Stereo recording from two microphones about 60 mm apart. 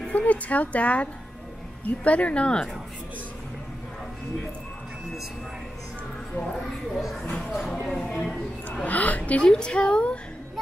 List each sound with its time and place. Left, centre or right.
0.1 s speech: left
2.0 s speech: left
6.3 s speech: centre
7.4 s speech: centre
7.8 s a sound: centre
8.8 s a woman's voice: left